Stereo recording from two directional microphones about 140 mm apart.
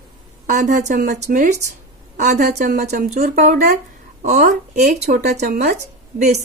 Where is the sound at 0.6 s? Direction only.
65° right (ahead or behind).